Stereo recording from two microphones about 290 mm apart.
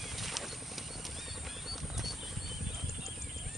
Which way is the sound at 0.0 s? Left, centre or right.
Centre.